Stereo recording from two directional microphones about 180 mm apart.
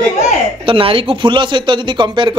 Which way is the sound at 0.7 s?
30° right (ahead or behind).